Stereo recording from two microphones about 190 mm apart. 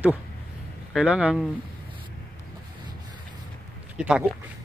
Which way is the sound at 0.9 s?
5° right (ahead or behind).